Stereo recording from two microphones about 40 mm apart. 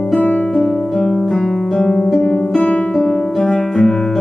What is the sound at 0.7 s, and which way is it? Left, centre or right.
Music, centre.